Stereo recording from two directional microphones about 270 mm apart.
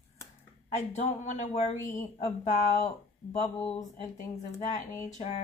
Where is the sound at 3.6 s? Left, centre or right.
Left.